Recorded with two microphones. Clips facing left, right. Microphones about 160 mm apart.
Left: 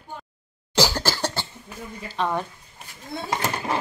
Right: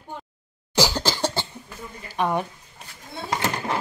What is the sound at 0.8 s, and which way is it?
Cough, 10° right (ahead or behind).